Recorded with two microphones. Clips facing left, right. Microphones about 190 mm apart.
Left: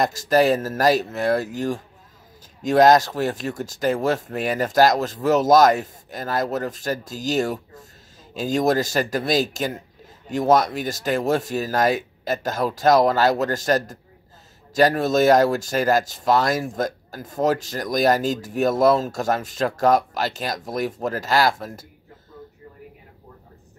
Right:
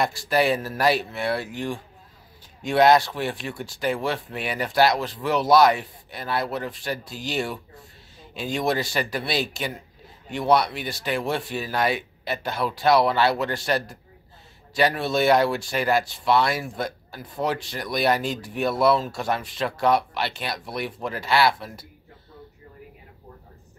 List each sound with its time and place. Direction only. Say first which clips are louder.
0.0 s speech: left 4 dB; 40° left (ahead or behind)